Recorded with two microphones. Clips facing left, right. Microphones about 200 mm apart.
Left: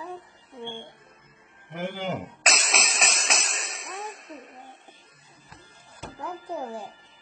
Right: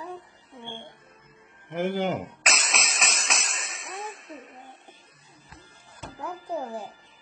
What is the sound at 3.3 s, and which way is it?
Music, 35° left (ahead or behind).